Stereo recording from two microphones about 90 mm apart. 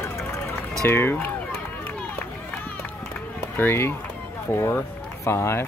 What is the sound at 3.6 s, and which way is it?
Speech, 25° left (ahead or behind).